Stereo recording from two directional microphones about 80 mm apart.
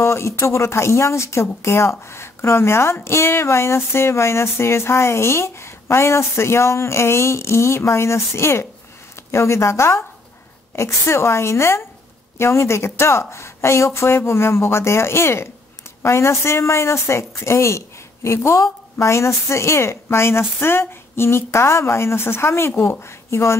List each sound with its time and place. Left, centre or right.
0.0 s speech: left